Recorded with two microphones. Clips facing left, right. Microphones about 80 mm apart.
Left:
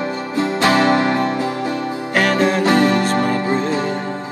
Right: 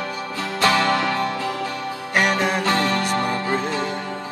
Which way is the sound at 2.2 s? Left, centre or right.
Centre.